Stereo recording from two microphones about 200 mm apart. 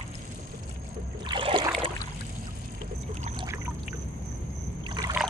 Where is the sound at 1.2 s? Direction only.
25° right (ahead or behind).